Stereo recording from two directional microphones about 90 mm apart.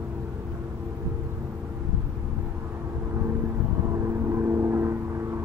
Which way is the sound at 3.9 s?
30° right (ahead or behind).